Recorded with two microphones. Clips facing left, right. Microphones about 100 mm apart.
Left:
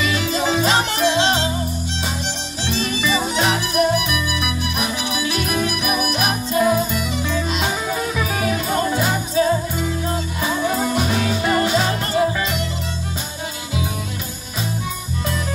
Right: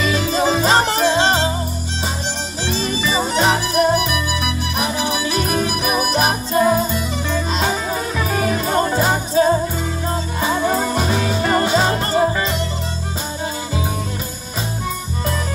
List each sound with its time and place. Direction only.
0.0 s music: 40° right (ahead or behind)
2.6 s music: 35° right (ahead or behind)